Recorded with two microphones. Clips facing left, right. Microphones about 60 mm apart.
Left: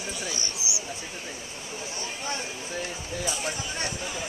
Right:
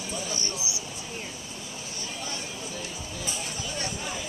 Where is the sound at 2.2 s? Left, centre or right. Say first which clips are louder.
Left 3 dB; left.